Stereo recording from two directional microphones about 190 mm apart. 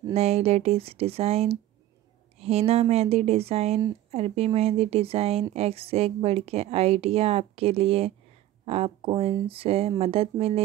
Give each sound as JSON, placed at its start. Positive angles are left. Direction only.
{"t": 0.1, "sound": "a woman's voice", "side_deg": -35}